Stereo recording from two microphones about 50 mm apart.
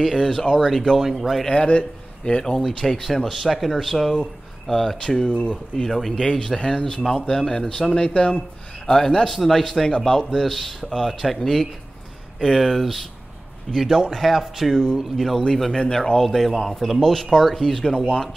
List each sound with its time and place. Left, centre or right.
0.0 s speech: centre
0.9 s speech: centre
1.5 s speech: left; by 4.9 s centre
5.2 s speech: centre
5.9 s speech: centre
8.8 s speech: centre
9.8 s speech: centre
14.1 s speech: centre
15.7 s speech: centre